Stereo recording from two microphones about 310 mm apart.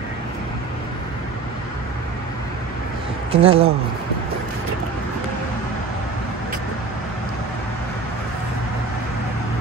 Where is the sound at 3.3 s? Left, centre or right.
Centre.